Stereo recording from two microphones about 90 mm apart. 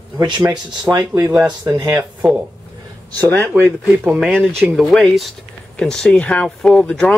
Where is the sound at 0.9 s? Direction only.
45° right (ahead or behind).